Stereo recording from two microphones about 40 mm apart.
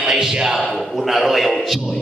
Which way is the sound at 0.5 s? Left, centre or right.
Centre.